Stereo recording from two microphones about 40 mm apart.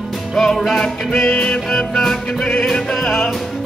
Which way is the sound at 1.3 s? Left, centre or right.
Left.